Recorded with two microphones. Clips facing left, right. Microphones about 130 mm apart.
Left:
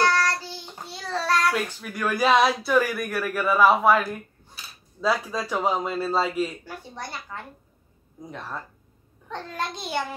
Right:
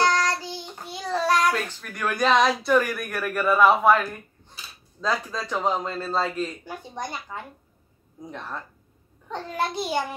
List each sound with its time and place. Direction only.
0.0 s child singing: 15° right (ahead or behind)
1.5 s a man's voice: 5° left (ahead or behind)
6.6 s a woman's voice: 15° right (ahead or behind)
8.3 s speech: 5° left (ahead or behind)
9.3 s a woman's voice: 10° right (ahead or behind)